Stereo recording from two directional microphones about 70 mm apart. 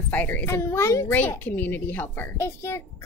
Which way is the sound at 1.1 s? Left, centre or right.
Left.